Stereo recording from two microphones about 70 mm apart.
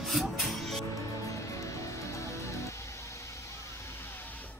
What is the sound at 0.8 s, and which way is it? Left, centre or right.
Music, left.